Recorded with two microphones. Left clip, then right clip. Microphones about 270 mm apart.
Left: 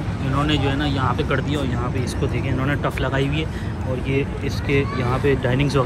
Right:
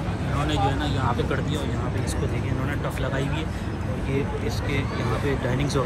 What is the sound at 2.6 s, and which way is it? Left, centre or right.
Speech, centre.